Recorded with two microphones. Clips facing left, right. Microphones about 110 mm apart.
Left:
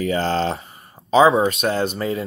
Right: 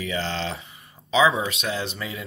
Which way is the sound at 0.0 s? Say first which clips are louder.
Left 8 dB; 45° left (ahead or behind).